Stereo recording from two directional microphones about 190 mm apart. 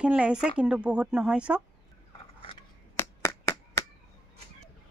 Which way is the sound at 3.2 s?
15° left (ahead or behind).